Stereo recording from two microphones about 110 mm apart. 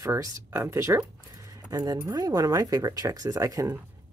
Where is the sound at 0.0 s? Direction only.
30° right (ahead or behind).